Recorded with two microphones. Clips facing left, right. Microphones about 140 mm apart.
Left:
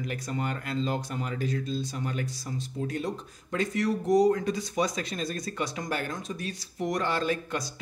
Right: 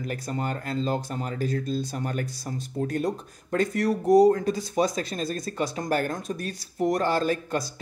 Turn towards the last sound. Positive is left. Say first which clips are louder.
# right 4 dB
turn(degrees=-40)  # may be behind; listen again after turning